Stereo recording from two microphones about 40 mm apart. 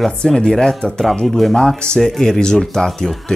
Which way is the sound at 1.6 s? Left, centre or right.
Centre.